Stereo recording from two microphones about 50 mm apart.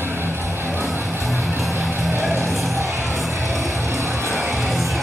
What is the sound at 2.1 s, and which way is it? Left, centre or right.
Vehicle, right.